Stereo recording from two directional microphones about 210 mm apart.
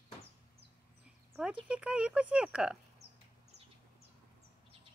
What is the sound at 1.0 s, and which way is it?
Speech, 5° right (ahead or behind).